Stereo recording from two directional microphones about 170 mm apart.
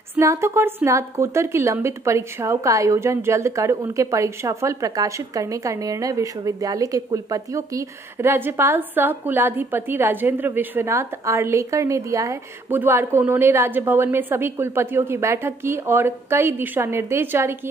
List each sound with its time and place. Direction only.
0.1 s a woman's voice: 15° right (ahead or behind)